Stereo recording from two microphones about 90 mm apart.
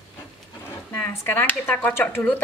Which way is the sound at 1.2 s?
20° left (ahead or behind).